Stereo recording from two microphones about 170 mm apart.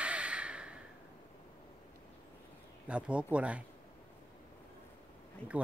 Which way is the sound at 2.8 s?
5° right (ahead or behind).